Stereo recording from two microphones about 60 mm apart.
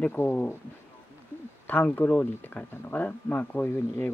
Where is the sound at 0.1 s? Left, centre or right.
Left.